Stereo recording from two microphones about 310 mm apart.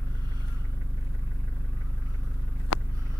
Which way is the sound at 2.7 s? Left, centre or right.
Left.